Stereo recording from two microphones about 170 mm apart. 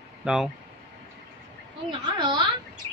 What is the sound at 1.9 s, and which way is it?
Speech, 30° right (ahead or behind).